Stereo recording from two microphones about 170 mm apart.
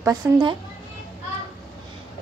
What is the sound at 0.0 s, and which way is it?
Speech, 20° right (ahead or behind).